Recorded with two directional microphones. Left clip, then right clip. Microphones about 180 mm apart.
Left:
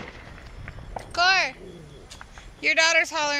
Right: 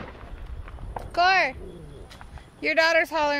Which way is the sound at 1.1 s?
40° right (ahead or behind).